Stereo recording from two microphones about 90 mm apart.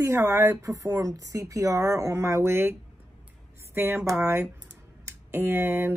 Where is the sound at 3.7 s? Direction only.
25° right (ahead or behind).